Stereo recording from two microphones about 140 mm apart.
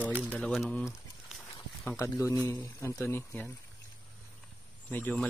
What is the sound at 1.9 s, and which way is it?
Speech, 20° left (ahead or behind).